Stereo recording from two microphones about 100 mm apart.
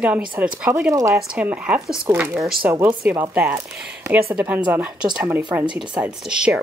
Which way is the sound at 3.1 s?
15° right (ahead or behind).